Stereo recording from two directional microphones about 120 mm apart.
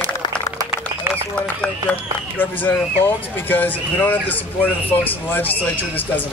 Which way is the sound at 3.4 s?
15° left (ahead or behind).